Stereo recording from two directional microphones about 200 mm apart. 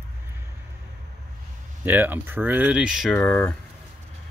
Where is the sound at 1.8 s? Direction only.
10° right (ahead or behind); by 3.5 s 5° left (ahead or behind).